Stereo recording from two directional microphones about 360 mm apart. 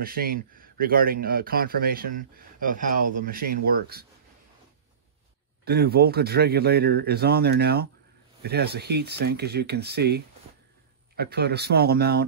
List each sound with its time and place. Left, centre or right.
0.0 s speech: right
5.7 s speech: right